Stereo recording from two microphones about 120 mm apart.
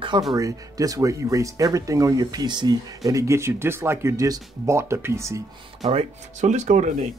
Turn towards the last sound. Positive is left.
turn(degrees=-90)